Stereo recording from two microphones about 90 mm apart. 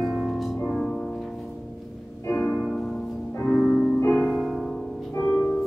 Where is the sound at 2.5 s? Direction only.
Centre (ahead or behind).